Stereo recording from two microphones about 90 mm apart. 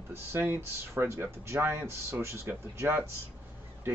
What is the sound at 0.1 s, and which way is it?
Speech, 25° right (ahead or behind).